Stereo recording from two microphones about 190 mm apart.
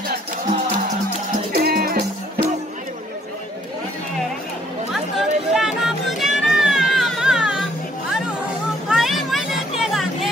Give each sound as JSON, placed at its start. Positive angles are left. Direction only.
{"t": 1.5, "sound": "music", "side_deg": -50}
{"t": 4.9, "sound": "music", "side_deg": 0}
{"t": 8.8, "sound": "music", "side_deg": 0}